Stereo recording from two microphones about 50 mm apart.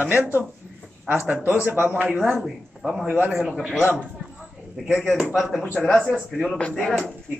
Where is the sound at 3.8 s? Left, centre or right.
Right.